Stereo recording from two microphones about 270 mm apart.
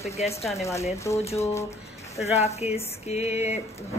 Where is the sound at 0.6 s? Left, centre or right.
Centre.